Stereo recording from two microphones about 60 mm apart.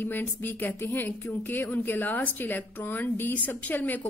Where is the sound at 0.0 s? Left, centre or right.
Left.